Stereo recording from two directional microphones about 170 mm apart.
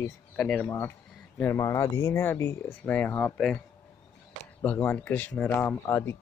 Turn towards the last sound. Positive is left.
turn(degrees=10)  # may be behind; listen again after turning